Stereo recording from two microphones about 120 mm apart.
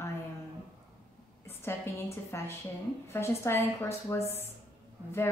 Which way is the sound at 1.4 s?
20° left (ahead or behind).